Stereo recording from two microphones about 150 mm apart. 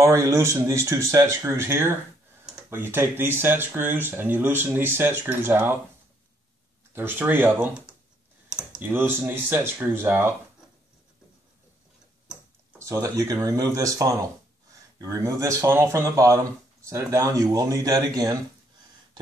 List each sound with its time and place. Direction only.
0.0 s speech: 20° right (ahead or behind)
6.9 s speech: 15° right (ahead or behind)
12.7 s speech: 20° right (ahead or behind)